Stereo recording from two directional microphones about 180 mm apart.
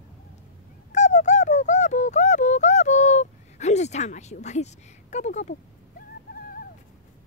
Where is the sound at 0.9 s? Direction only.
40° left (ahead or behind).